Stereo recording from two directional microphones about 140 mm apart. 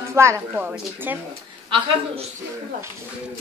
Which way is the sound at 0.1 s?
20° right (ahead or behind).